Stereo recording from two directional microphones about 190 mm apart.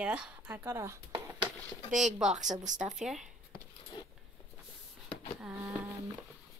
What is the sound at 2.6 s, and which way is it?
Speech, 40° right (ahead or behind).